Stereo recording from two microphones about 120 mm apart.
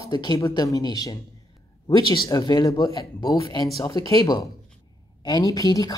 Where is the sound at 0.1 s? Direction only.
40° left (ahead or behind).